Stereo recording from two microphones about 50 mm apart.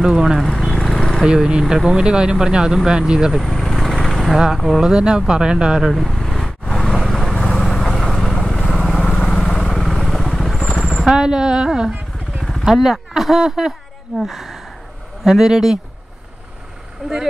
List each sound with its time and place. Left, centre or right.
0.0 s speech: centre
0.7 s a sound: centre
1.2 s speech: centre
3.3 s vehicle: centre
4.6 s speech: centre
4.8 s speech: centre
5.8 s vehicle: centre
9.1 s vehicle: left
9.8 s vehicle: centre
11.1 s a sound: centre
12.4 s vehicle: centre
12.6 s speech: centre
17.0 s speech: centre